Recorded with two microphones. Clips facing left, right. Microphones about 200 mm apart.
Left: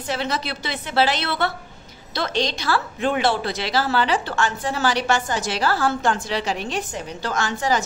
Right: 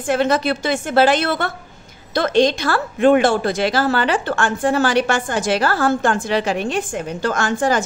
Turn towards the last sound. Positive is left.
turn(degrees=-50)  # may be behind; listen again after turning